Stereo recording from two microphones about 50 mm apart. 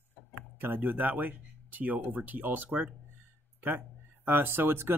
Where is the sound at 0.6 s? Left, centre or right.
Right.